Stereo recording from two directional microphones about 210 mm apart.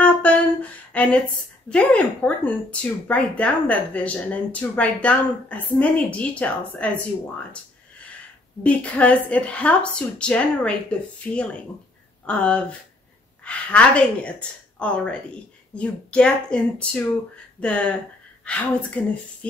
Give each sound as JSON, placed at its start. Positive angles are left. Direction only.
{"t": 0.0, "sound": "a sound", "side_deg": 5}
{"t": 1.7, "sound": "speech", "side_deg": 5}
{"t": 8.6, "sound": "a woman's voice", "side_deg": 5}